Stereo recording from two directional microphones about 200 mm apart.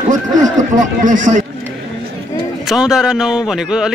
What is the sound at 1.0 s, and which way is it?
Speech, 40° right (ahead or behind).